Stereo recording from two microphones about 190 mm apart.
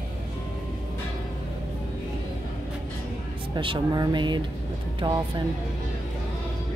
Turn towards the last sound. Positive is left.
turn(degrees=-20)  # may be behind; listen again after turning